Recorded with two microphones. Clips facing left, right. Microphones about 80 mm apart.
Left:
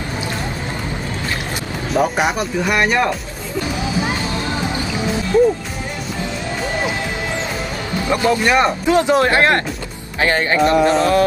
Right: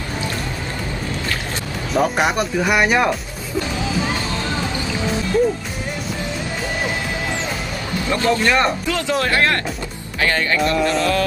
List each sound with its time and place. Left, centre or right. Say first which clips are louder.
2.0 s speech: even; centre
3.7 s music: left 2 dB; centre
8.1 s speech: left 2 dB; centre